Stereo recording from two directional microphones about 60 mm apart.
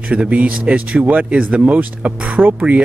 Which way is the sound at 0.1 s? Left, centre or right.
Right.